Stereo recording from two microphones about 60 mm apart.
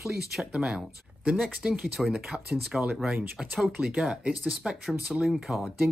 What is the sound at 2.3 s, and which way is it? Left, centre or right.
Speech, centre.